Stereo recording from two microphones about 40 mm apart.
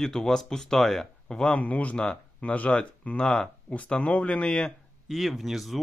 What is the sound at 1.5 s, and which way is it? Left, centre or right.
Speech, left.